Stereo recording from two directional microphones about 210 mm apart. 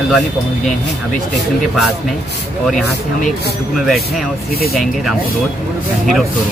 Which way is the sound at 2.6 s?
5° left (ahead or behind).